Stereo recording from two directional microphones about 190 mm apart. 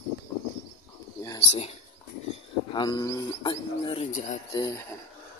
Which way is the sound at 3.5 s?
30° left (ahead or behind).